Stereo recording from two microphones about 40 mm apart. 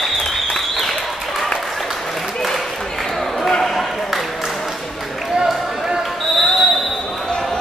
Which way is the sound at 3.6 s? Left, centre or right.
Centre.